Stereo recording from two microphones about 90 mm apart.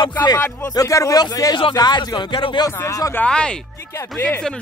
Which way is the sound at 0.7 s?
40° left (ahead or behind).